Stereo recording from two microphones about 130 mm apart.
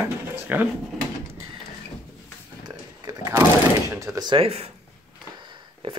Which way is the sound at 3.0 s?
30° right (ahead or behind).